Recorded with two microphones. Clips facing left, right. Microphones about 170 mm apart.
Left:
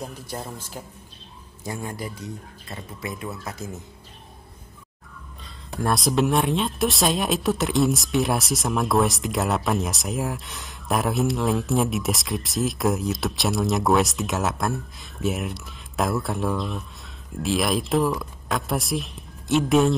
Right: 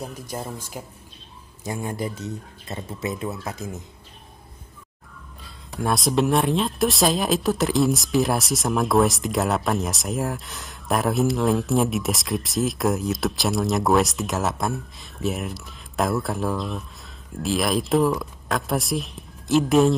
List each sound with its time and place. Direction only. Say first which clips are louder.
0.0 s speech: right 1 dB; 10° right (ahead or behind)
1.6 s speech: right 3 dB; 20° right (ahead or behind)
5.4 s speech: even; centre (ahead or behind)